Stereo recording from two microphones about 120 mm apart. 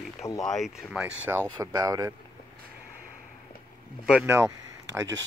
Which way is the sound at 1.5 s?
30° right (ahead or behind).